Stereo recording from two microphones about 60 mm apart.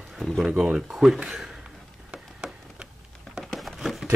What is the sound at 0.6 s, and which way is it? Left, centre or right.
Speech, centre.